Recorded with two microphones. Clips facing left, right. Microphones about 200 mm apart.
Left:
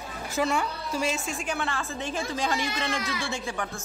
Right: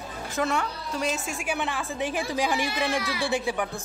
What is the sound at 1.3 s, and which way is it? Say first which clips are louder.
Speech: right 1 dB; 15° right (ahead or behind).